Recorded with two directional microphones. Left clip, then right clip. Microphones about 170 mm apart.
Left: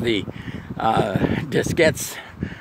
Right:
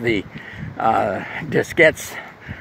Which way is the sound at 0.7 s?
40° left (ahead or behind).